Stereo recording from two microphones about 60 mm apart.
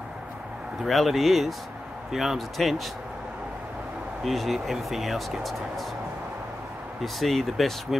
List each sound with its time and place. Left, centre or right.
0.8 s speech: centre
4.2 s speech: centre
7.0 s speech: centre